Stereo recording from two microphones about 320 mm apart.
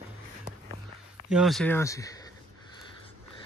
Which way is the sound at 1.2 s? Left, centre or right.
Centre.